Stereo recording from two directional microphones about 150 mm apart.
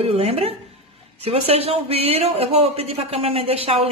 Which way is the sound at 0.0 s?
40° right (ahead or behind).